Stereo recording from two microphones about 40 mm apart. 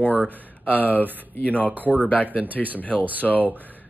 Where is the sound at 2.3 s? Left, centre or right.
Right.